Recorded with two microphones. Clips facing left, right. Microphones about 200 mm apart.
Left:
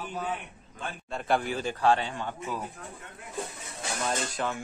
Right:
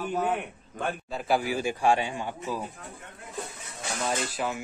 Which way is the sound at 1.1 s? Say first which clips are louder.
Even; 5° right (ahead or behind).